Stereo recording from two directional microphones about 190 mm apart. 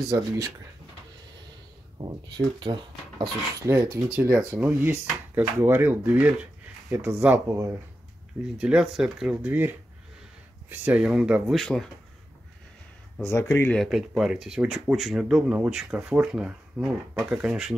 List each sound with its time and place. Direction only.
0.1 s speech: 15° right (ahead or behind)
2.0 s speech: 20° right (ahead or behind)
10.7 s speech: 10° right (ahead or behind)
13.3 s speech: 15° left (ahead or behind); by 17.7 s 5° right (ahead or behind)